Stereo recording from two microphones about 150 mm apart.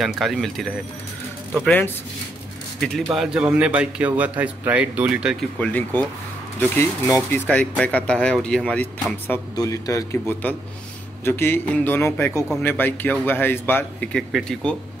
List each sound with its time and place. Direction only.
0.0 s speech: centre (ahead or behind)
3.1 s a man's voice: 5° right (ahead or behind)
5.6 s speech: 10° left (ahead or behind)
9.6 s a man's voice: 20° left (ahead or behind); by 14.8 s 5° left (ahead or behind)